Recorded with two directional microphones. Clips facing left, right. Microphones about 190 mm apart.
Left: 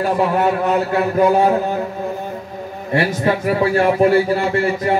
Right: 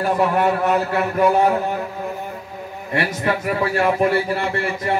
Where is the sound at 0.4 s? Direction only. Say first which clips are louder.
Left 1 dB; 25° left (ahead or behind).